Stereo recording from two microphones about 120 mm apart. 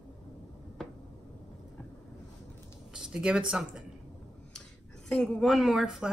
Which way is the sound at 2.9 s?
5° right (ahead or behind).